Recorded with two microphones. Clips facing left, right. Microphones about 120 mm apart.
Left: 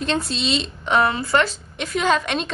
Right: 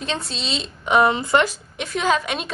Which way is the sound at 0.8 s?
15° right (ahead or behind).